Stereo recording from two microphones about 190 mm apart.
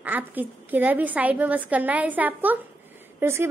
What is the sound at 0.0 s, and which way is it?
A woman's voice, 10° right (ahead or behind).